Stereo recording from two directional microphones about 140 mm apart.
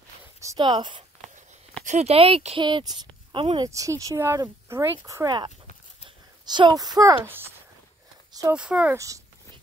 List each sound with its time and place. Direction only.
0.4 s a sound: 20° right (ahead or behind)
0.7 s speech: 35° right (ahead or behind)
1.9 s speech: 50° right (ahead or behind); by 7.4 s 20° right (ahead or behind)
8.3 s a sound: 25° right (ahead or behind)
8.5 s speech: 5° right (ahead or behind)
8.9 s speech: 25° right (ahead or behind)